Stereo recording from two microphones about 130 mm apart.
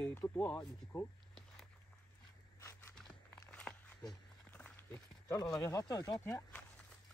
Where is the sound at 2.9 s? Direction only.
5° left (ahead or behind).